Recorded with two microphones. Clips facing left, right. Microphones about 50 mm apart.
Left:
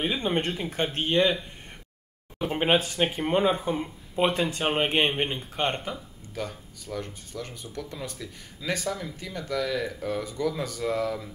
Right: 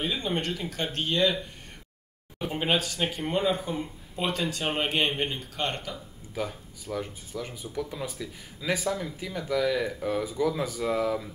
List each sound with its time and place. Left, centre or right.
0.0 s speech: left
2.4 s speech: left
6.3 s speech: centre